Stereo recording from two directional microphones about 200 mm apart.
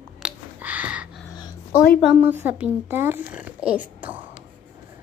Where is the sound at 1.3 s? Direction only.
20° left (ahead or behind).